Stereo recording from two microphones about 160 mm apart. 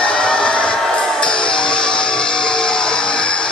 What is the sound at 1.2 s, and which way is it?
Music, 5° left (ahead or behind).